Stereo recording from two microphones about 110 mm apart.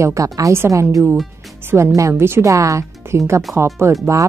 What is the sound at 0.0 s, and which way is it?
Speech, 30° right (ahead or behind).